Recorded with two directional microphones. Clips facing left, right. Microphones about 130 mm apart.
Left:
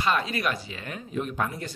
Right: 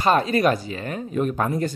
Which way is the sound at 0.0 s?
40° right (ahead or behind).